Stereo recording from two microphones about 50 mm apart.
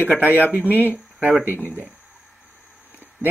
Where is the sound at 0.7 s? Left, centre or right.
Left.